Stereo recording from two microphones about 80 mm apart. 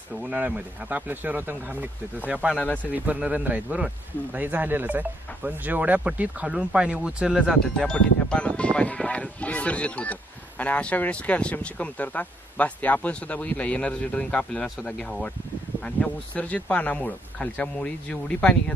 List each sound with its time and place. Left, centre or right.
0.1 s speech: centre
2.5 s speech: centre
2.9 s speech: centre
7.4 s speech: centre